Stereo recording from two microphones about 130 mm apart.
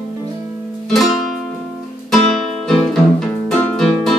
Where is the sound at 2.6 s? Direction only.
5° left (ahead or behind).